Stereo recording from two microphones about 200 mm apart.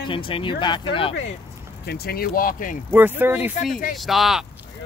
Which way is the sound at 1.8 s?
50° left (ahead or behind).